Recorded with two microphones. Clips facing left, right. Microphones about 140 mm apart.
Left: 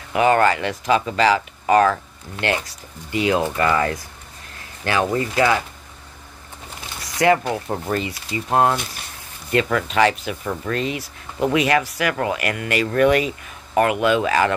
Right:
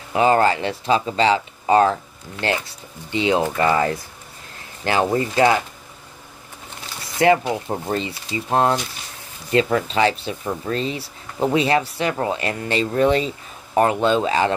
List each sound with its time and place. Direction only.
0.1 s speech: 30° right (ahead or behind)
7.0 s a sound: 25° right (ahead or behind)
7.4 s speech: 15° right (ahead or behind)
7.9 s speech: 25° right (ahead or behind)